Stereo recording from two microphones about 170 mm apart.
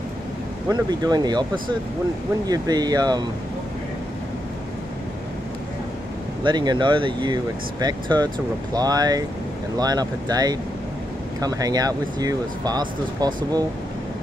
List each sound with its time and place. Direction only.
0.7 s speech: 25° right (ahead or behind)
6.4 s speech: 25° right (ahead or behind)